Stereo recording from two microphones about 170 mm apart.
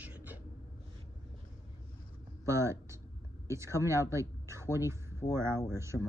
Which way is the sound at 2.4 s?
15° right (ahead or behind).